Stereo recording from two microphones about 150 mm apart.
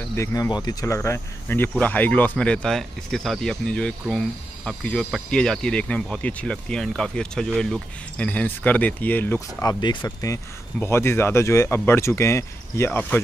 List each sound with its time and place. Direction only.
0.1 s speech: 20° left (ahead or behind)
9.7 s speech: 30° left (ahead or behind)